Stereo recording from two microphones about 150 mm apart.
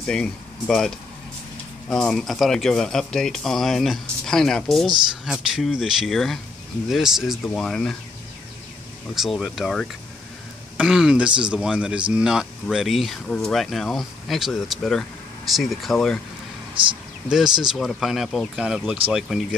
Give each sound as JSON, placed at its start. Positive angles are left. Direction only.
{"t": 0.0, "sound": "speech", "side_deg": 5}
{"t": 9.1, "sound": "speech", "side_deg": 0}
{"t": 16.8, "sound": "speech", "side_deg": -35}
{"t": 17.3, "sound": "speech", "side_deg": -5}